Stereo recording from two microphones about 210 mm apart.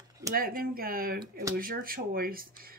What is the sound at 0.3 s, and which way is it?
Speech, 45° right (ahead or behind).